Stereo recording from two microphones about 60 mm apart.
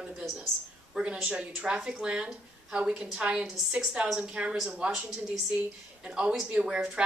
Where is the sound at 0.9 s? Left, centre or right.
Centre.